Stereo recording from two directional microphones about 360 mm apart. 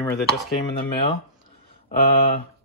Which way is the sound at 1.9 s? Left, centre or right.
Left.